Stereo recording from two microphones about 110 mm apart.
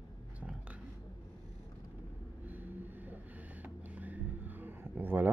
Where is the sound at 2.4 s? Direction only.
15° right (ahead or behind).